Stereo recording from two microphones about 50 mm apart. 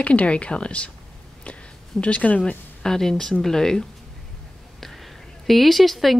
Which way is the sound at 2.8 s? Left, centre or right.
Centre.